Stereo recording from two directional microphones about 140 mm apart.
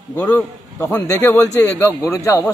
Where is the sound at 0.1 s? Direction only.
25° left (ahead or behind).